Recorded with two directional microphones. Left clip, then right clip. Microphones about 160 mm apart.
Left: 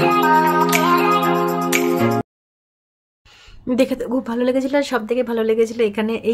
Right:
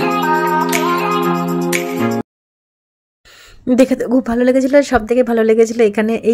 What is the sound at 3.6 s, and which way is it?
Speech, 35° right (ahead or behind).